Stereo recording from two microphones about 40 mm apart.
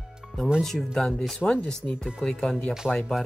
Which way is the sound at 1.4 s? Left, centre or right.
Centre.